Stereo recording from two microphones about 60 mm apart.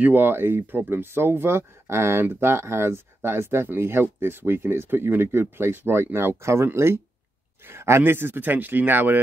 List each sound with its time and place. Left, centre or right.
0.0 s speech: right